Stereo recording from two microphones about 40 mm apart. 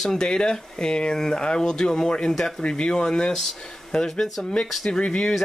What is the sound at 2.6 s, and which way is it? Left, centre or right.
Speech, left.